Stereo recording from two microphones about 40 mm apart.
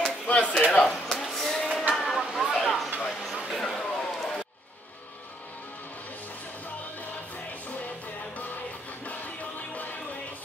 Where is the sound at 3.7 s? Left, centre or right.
Centre.